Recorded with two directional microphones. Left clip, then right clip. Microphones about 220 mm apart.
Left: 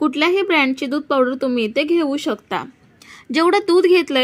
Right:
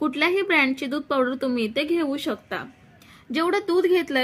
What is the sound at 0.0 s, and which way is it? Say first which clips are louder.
A woman's voice: left 5 dB; 20° left (ahead or behind).